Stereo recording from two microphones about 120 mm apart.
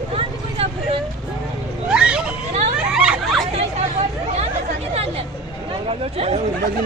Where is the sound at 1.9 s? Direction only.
10° right (ahead or behind).